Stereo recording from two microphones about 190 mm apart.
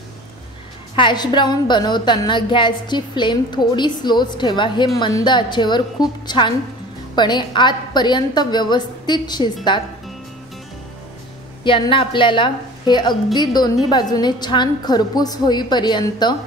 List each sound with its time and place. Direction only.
0.9 s a woman's voice: 25° left (ahead or behind)
11.6 s a woman's voice: 25° left (ahead or behind)